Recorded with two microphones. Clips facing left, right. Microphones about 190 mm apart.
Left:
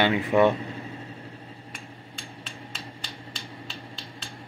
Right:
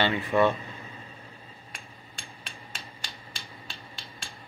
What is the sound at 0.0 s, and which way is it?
Speech, 15° left (ahead or behind).